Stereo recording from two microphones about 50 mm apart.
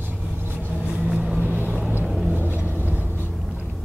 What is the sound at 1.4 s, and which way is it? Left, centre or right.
Vehicle, right.